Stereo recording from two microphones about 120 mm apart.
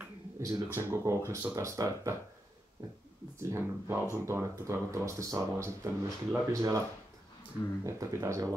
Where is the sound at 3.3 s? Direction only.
20° right (ahead or behind).